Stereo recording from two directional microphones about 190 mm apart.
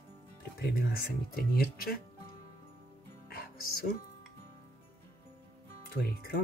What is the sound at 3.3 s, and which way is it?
Music, 50° left (ahead or behind).